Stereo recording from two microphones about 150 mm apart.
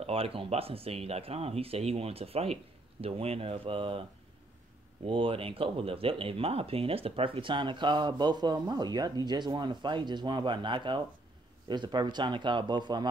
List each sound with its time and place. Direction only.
0.0 s speech: 40° right (ahead or behind)
5.0 s speech: 35° right (ahead or behind)